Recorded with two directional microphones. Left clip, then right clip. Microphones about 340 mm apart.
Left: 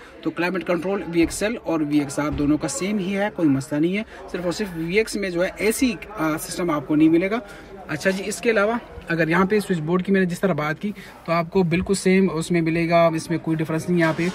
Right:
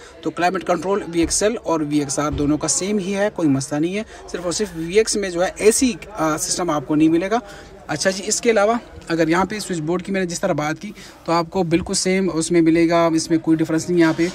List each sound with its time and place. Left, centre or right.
0.2 s speech: centre